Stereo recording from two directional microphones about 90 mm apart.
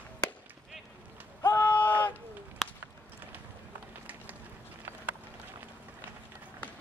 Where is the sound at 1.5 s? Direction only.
20° left (ahead or behind).